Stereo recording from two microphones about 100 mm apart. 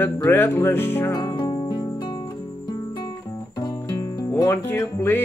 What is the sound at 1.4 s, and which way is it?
Music, 45° left (ahead or behind).